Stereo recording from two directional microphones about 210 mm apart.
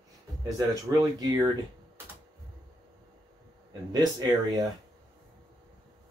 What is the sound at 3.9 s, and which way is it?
Speech, 20° right (ahead or behind).